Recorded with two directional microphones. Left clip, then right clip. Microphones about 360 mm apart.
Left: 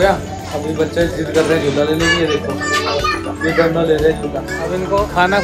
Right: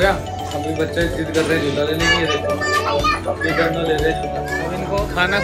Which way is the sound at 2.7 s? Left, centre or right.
Centre.